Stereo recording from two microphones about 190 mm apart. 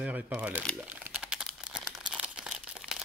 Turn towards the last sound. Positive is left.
turn(degrees=0)  # may be behind; listen again after turning